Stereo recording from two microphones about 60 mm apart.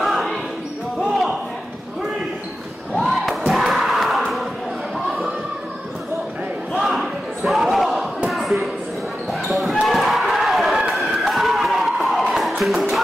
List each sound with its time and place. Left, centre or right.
0.0 s basketball bounce: centre
3.0 s crowd: centre
6.7 s battle cry: centre
8.3 s a sound: centre
9.3 s basketball bounce: centre
9.8 s a sound: centre